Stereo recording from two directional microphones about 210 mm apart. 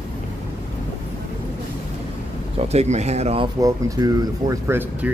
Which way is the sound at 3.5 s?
15° right (ahead or behind).